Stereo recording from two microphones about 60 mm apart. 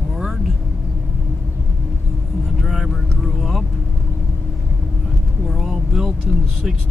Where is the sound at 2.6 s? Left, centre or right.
Centre.